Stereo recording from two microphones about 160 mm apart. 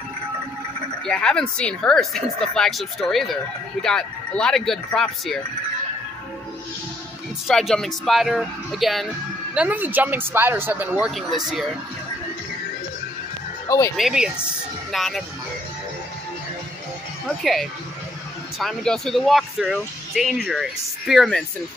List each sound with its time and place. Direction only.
1.0 s speech: 5° left (ahead or behind)
7.4 s speech: centre (ahead or behind)
13.7 s speech: 15° left (ahead or behind)
13.9 s speech: 5° right (ahead or behind)
17.4 s speech: centre (ahead or behind)